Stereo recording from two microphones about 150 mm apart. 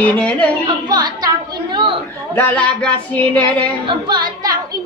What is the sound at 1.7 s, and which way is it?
Chatter, 35° right (ahead or behind).